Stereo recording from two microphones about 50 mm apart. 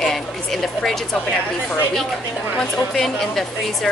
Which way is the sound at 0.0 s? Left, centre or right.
Centre.